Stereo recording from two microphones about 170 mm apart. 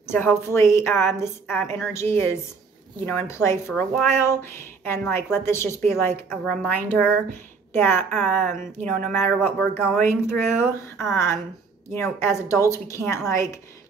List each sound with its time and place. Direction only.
0.0 s a woman's voice: 15° left (ahead or behind)